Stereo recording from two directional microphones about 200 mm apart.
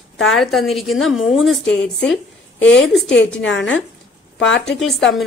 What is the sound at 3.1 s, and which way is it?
Speech, 70° left (ahead or behind).